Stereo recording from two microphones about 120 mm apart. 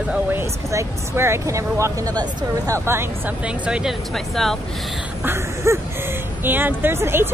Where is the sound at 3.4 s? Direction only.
5° right (ahead or behind).